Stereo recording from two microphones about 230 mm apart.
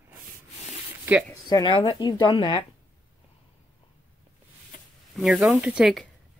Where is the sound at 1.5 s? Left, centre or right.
Left.